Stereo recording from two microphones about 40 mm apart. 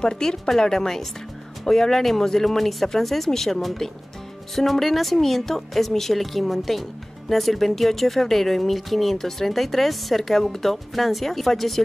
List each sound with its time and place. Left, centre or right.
0.0 s speech: centre